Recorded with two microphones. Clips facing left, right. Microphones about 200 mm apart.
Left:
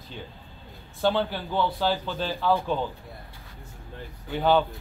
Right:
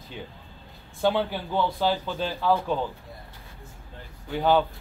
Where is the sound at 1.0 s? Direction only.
5° right (ahead or behind).